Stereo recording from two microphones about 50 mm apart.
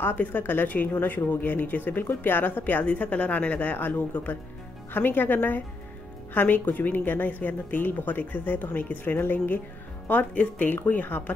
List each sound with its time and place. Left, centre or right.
0.0 s speech: left
2.8 s speech: left
3.7 s speech: left
4.1 s speech: left
4.9 s speech: left
10.0 s speech: left